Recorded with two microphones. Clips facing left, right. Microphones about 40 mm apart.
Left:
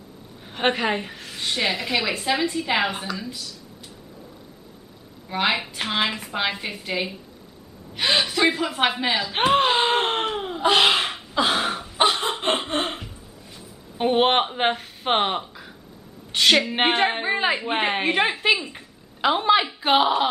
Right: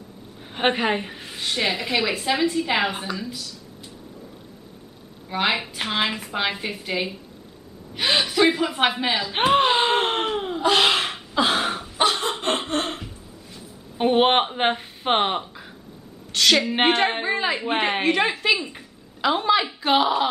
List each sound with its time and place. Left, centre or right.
0.6 s a woman's voice: centre
5.3 s a woman's voice: centre
10.8 s a sound: centre
12.1 s snicker: centre
13.9 s speech: centre
16.3 s a woman's voice: centre
16.6 s a woman's voice: centre
18.1 s speech: centre